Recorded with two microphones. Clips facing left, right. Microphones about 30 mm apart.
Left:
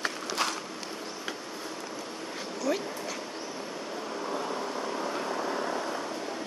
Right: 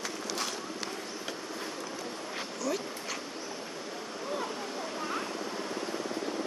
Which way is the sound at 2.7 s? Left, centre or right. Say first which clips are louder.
Left 4 dB; left.